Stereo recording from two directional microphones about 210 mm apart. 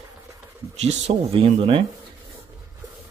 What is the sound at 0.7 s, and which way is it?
Speech, 30° right (ahead or behind).